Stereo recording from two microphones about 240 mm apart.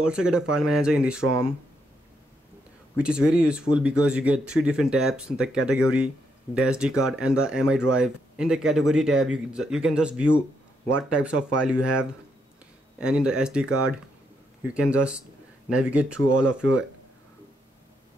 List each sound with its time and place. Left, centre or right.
0.0 s speech: centre
3.0 s speech: centre
14.7 s speech: centre